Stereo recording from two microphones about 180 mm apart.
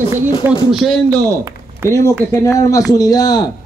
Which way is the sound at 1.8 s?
15° left (ahead or behind).